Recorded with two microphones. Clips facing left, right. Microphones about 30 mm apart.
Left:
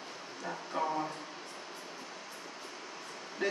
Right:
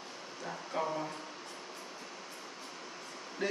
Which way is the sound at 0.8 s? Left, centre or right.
Centre.